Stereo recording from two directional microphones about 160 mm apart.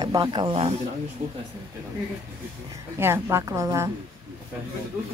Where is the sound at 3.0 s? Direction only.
15° right (ahead or behind).